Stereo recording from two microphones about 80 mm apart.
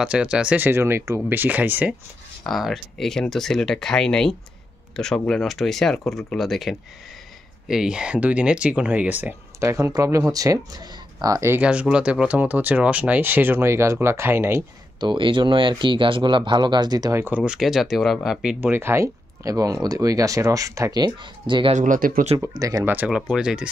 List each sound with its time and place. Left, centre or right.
0.0 s speech: centre
0.7 s speech: right
2.4 s speech: centre; by 9.3 s right
9.6 s speech: right
11.6 s speech: centre
15.0 s speech: right
17.3 s speech: centre
18.6 s speech: right
19.4 s speech: right
20.9 s speech: right
22.5 s speech: right
22.8 s speech: right
23.1 s speech: centre